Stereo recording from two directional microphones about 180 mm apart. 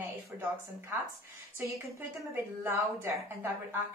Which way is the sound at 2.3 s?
15° right (ahead or behind).